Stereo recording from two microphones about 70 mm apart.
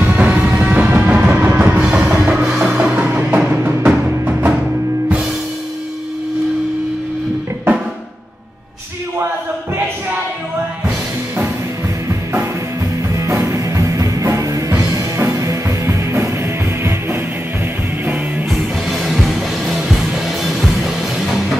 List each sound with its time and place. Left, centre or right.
0.0 s music: right
1.8 s music: centre
12.1 s music: right
13.1 s music: right
18.5 s music: centre